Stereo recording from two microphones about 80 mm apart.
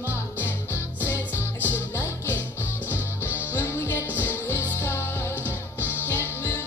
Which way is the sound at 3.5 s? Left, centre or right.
Left.